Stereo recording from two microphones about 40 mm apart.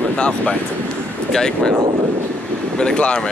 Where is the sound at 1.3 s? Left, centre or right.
Centre.